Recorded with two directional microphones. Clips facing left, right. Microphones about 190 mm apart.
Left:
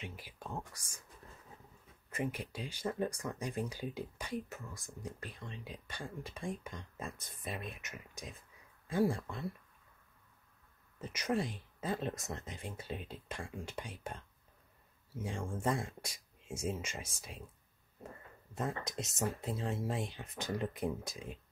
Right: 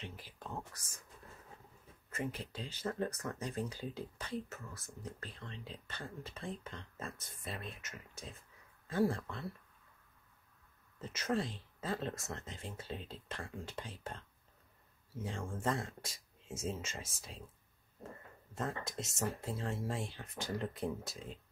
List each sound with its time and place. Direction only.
0.0 s speech: 10° left (ahead or behind)
2.0 s speech: 15° left (ahead or behind)
11.0 s speech: 15° left (ahead or behind)
15.2 s speech: 15° left (ahead or behind)
18.5 s speech: 15° left (ahead or behind)